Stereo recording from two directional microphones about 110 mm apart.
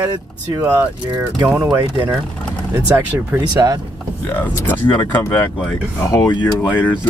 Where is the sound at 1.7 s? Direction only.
25° right (ahead or behind).